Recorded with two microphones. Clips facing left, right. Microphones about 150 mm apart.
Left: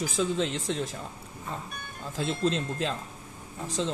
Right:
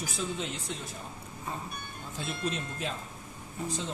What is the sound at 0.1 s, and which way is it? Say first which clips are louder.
Speech: left 8 dB; 90° left.